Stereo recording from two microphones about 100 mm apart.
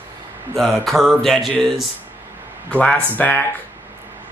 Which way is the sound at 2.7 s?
15° left (ahead or behind).